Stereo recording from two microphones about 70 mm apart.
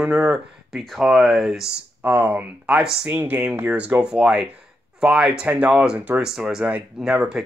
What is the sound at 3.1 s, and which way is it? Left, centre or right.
Speech, right.